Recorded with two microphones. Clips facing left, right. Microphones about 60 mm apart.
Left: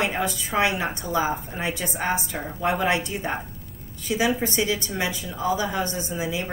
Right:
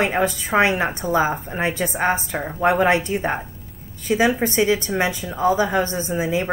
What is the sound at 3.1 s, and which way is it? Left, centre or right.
A woman's voice, right.